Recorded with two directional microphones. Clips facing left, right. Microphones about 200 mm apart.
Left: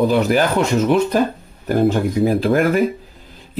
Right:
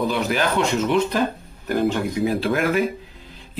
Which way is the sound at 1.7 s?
45° left (ahead or behind).